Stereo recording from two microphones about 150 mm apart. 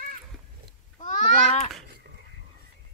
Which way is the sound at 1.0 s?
45° left (ahead or behind).